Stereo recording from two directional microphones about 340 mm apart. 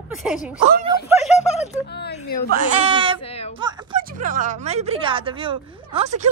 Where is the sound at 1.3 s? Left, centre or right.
Centre.